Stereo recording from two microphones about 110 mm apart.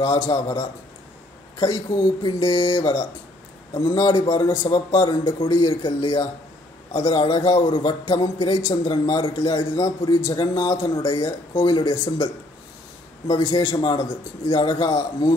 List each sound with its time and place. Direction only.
0.0 s a man's voice: 40° left (ahead or behind)
13.3 s a man's voice: 35° left (ahead or behind)